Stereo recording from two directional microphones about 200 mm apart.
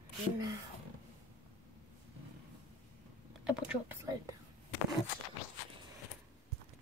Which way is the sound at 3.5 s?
5° right (ahead or behind).